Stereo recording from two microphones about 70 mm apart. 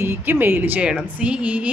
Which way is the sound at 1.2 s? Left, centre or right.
Centre.